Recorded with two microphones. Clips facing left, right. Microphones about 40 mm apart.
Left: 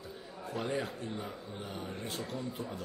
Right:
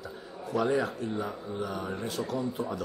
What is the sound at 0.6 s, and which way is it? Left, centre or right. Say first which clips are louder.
Speech: right 6 dB; right.